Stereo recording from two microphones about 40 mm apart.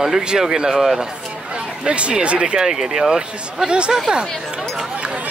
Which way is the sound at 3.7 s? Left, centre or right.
Right.